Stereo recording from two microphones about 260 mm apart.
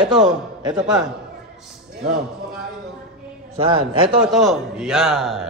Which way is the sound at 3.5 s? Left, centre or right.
Right.